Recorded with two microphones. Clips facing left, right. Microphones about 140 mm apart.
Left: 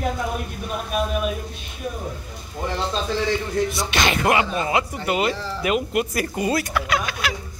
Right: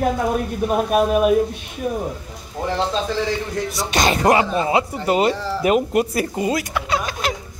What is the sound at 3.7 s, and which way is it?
Speech, 40° right (ahead or behind).